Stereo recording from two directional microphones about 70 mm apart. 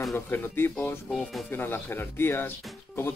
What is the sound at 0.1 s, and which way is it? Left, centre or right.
Speech, left.